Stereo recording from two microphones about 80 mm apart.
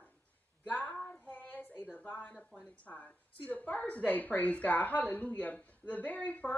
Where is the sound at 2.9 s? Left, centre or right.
Left.